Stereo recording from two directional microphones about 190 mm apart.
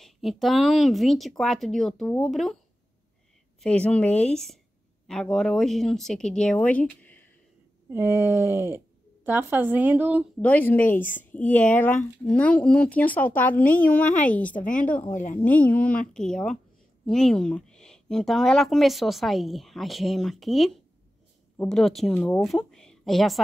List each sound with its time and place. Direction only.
0.0 s speech: centre (ahead or behind)
3.6 s speech: 5° left (ahead or behind)
7.9 s speech: 15° right (ahead or behind)
10.4 s a woman's voice: 10° left (ahead or behind)
14.6 s a woman's voice: 45° left (ahead or behind)
14.9 s a woman's voice: 10° left (ahead or behind)